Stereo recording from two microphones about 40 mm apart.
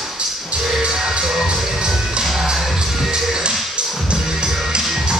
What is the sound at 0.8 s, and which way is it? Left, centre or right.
Music, right.